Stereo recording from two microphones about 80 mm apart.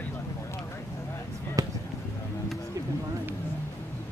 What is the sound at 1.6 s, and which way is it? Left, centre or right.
Basketball bounce, right.